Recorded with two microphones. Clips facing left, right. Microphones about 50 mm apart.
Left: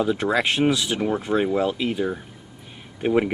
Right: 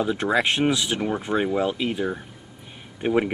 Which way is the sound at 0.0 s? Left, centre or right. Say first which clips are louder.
Left 1 dB; centre.